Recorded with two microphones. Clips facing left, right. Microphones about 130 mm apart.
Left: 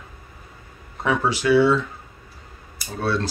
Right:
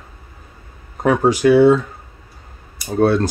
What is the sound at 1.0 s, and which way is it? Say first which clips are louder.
Speech: right 8 dB; 45° right (ahead or behind).